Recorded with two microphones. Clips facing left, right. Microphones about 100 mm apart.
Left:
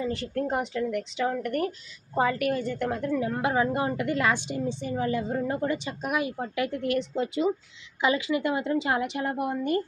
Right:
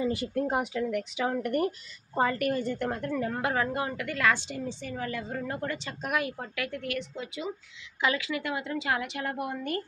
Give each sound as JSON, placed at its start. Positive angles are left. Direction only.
{"t": 0.0, "sound": "speech", "side_deg": -10}
{"t": 2.1, "sound": "a woman's voice", "side_deg": 5}
{"t": 6.6, "sound": "a woman's voice", "side_deg": 30}
{"t": 8.0, "sound": "a woman's voice", "side_deg": 20}